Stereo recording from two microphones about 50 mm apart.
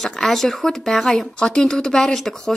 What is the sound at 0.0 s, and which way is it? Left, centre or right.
Speech, centre.